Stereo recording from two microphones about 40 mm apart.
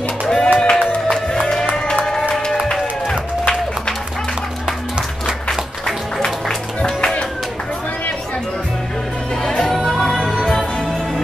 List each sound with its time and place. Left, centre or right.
0.3 s music: centre
2.7 s run: centre
9.8 s music: centre